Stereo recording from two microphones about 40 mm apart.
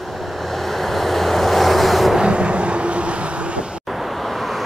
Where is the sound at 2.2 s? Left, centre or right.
Right.